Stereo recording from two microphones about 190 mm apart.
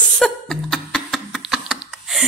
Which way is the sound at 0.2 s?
Centre (ahead or behind).